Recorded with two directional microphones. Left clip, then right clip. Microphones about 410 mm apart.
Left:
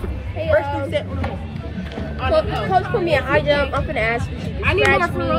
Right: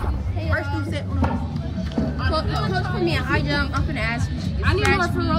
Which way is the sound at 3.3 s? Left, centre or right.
Centre.